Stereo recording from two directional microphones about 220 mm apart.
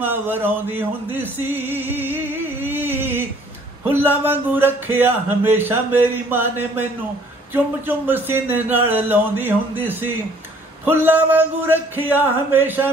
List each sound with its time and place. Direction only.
0.0 s speech: 10° right (ahead or behind)
2.6 s a sound: 10° right (ahead or behind)
4.0 s speech: 10° right (ahead or behind)